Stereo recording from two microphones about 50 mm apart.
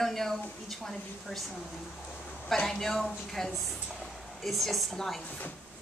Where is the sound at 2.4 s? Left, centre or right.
Centre.